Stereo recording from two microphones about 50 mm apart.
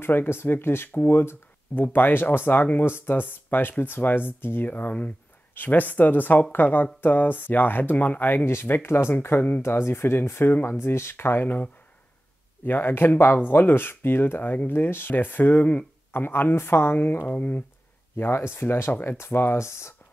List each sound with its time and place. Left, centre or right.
0.0 s speech: left
8.5 s speech: left
11.4 s speech: left
12.6 s speech: left
17.3 s speech: left
18.1 s speech: left